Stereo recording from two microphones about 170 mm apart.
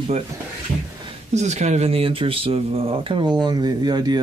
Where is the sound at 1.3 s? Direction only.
40° right (ahead or behind); by 4.1 s 25° right (ahead or behind).